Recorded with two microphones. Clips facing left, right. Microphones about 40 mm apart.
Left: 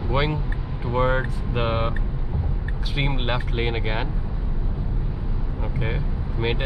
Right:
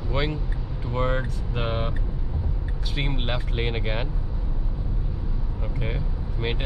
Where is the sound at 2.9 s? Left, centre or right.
Centre.